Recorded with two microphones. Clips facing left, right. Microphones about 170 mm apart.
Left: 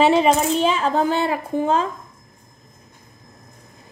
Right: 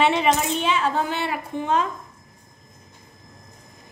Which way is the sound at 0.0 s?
35° left (ahead or behind).